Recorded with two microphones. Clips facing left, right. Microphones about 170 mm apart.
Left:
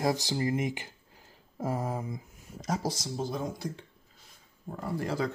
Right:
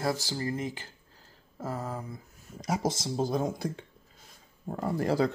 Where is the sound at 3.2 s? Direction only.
40° right (ahead or behind).